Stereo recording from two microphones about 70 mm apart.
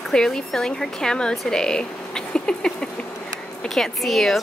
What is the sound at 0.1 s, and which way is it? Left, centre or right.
Speech, centre.